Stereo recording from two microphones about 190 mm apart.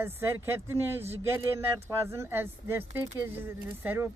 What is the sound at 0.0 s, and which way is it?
Speech, 10° right (ahead or behind).